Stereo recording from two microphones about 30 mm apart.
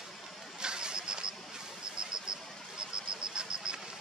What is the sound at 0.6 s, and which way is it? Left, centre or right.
Vehicle, right.